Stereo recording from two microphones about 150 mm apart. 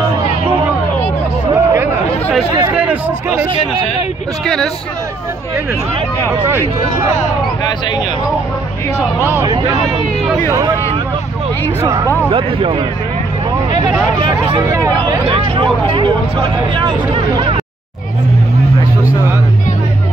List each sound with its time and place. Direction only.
1.5 s a sound: 20° right (ahead or behind)
2.7 s hubbub: 10° right (ahead or behind)
10.5 s speech: 20° right (ahead or behind)
12.3 s speech: 35° right (ahead or behind)
14.2 s speech: 35° right (ahead or behind)